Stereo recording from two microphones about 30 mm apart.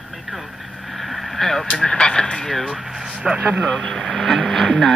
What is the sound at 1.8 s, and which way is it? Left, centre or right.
Speech, left.